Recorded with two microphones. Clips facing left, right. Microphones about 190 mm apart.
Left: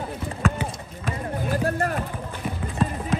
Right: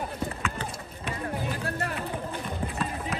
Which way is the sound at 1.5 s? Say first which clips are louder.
Left 8 dB; 50° left (ahead or behind).